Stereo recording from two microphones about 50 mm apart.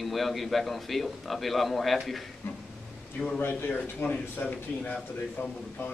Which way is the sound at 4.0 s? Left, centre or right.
Left.